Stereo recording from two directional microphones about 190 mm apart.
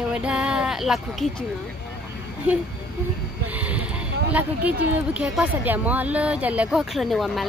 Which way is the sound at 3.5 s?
5° right (ahead or behind).